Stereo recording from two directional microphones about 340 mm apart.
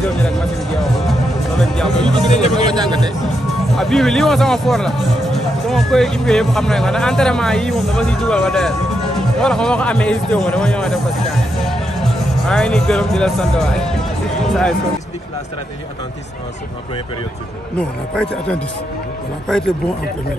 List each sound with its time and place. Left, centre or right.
0.0 s music: centre
1.6 s speech: centre
2.2 s speech: centre
2.8 s speech: centre
3.7 s speech: centre
17.7 s speech: centre